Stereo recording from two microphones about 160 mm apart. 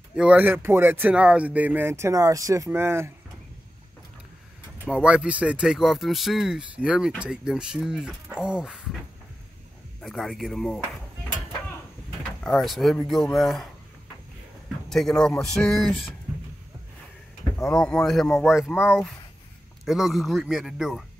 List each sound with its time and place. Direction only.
0.1 s speech: 5° right (ahead or behind)
4.8 s speech: 5° right (ahead or behind)
10.0 s speech: centre (ahead or behind)
12.4 s speech: centre (ahead or behind)
14.9 s speech: 5° left (ahead or behind)
17.6 s speech: 5° left (ahead or behind)